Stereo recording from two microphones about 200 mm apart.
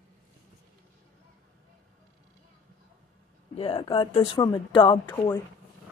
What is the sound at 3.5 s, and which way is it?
Speech, 25° left (ahead or behind).